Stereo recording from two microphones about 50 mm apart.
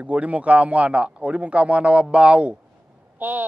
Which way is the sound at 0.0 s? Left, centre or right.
Right.